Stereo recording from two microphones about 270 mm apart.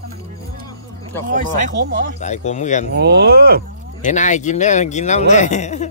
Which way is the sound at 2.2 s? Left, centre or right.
Left.